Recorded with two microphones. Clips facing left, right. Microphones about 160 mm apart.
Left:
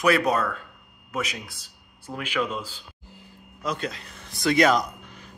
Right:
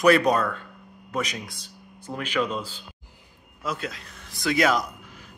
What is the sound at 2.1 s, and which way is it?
Speech, 15° right (ahead or behind).